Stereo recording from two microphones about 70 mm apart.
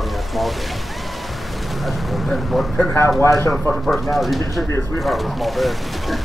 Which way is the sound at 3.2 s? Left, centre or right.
Left.